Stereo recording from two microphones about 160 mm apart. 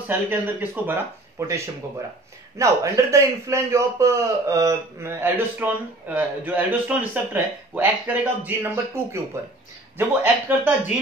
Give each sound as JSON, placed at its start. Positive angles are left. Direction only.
{"t": 0.3, "sound": "a man's voice", "side_deg": -10}